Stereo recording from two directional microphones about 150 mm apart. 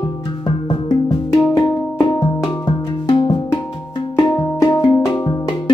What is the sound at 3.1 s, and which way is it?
Music, 30° left (ahead or behind).